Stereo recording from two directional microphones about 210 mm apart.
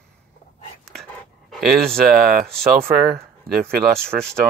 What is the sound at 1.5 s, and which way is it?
Speech, centre (ahead or behind).